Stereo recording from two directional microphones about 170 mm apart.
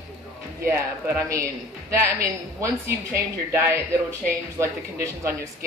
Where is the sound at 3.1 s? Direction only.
15° right (ahead or behind).